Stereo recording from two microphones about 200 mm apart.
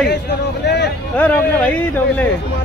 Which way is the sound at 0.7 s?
60° left (ahead or behind).